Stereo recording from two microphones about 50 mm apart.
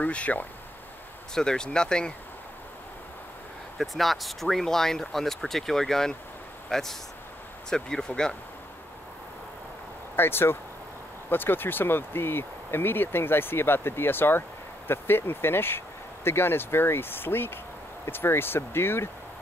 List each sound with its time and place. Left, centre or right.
0.0 s speech: left
1.3 s speech: centre
3.7 s speech: centre
10.1 s speech: left